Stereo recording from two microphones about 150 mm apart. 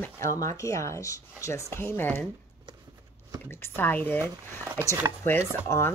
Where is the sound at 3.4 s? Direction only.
15° left (ahead or behind).